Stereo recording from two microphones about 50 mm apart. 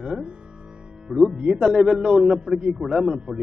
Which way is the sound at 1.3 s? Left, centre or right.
Centre.